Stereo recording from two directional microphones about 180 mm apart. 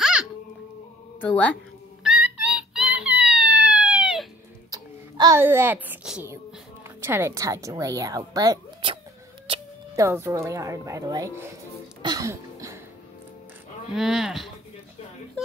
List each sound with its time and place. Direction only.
0.0 s music: 5° right (ahead or behind)
1.2 s speech: 10° left (ahead or behind)
2.0 s music: 5° right (ahead or behind)
4.6 s a sound: 20° right (ahead or behind)
5.4 s a woman's voice: 10° right (ahead or behind)
9.9 s speech: 15° right (ahead or behind)
12.0 s music: 20° right (ahead or behind)
13.9 s speech: centre (ahead or behind)